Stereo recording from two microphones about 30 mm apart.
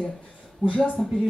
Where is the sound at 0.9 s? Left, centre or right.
Left.